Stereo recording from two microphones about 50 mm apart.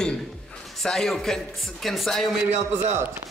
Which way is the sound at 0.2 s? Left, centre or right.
Centre.